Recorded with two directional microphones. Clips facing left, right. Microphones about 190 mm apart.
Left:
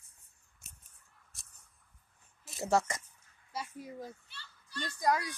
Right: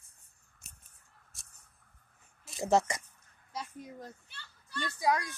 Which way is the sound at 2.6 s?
20° right (ahead or behind).